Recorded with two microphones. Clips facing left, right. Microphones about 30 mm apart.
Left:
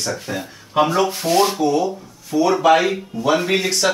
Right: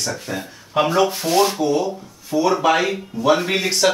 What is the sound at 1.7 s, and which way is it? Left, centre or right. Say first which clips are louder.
Speech: left 1 dB; centre.